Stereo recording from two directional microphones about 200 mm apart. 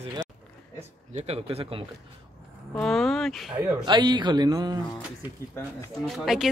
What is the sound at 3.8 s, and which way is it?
Speech, 20° right (ahead or behind).